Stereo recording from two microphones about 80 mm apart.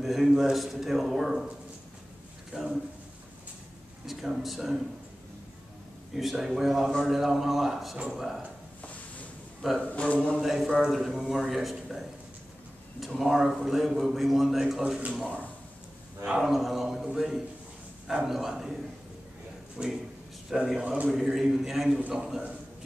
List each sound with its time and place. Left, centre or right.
0.0 s a man's voice: centre
2.5 s a man's voice: centre
4.0 s a man's voice: centre
6.1 s a man's voice: centre
8.8 s a sound: centre
9.6 s a man's voice: centre
9.9 s speech: centre
10.4 s a man's voice: centre
16.3 s a man's voice: centre
19.8 s a man's voice: centre